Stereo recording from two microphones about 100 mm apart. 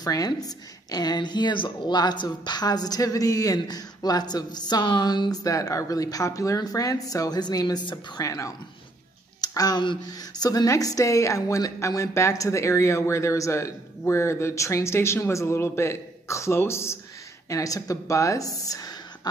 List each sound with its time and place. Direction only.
0.0 s a woman's voice: 40° left (ahead or behind)
9.4 s a sound: 40° left (ahead or behind)
9.8 s a woman's voice: 45° left (ahead or behind)